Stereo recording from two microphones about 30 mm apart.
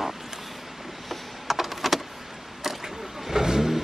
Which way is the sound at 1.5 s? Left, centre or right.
Centre.